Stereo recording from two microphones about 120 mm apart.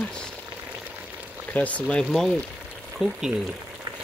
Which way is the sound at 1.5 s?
10° left (ahead or behind).